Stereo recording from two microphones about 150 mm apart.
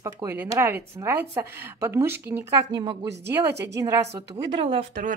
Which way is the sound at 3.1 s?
15° right (ahead or behind).